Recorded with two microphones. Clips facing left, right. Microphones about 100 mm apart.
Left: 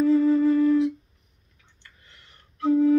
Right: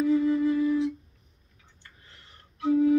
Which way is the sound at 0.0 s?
10° right (ahead or behind).